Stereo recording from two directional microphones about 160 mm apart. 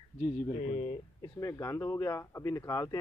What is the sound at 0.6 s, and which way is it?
Speech, 35° left (ahead or behind).